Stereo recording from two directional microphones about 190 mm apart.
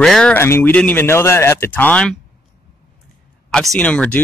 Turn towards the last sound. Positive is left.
turn(degrees=5)  # may be behind; listen again after turning